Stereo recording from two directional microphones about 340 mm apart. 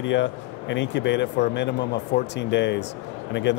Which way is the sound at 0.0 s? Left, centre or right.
Left.